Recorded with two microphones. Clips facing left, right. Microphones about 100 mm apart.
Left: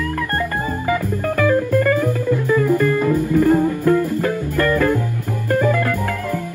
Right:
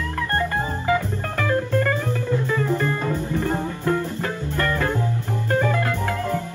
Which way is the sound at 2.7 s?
25° right (ahead or behind).